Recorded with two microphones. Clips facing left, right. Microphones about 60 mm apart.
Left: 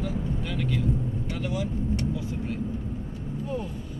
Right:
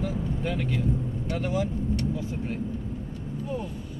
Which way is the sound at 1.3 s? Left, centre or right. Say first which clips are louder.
Right 4 dB; right.